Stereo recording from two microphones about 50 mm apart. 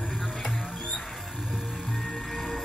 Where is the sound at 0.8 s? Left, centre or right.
Centre.